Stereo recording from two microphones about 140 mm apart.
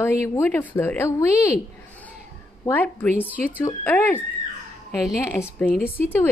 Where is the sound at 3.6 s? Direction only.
15° left (ahead or behind).